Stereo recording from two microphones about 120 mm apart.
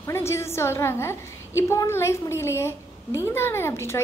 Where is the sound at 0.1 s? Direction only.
20° left (ahead or behind).